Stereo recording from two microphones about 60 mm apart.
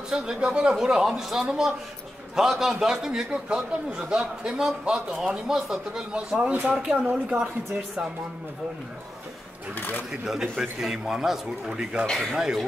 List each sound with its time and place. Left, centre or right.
0.1 s a man's voice: centre
9.8 s speech: left
10.2 s speech: centre